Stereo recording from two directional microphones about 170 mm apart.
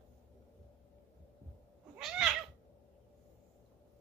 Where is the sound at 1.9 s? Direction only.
5° right (ahead or behind).